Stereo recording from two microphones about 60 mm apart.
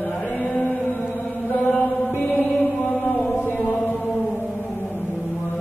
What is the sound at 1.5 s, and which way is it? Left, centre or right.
Chant, left.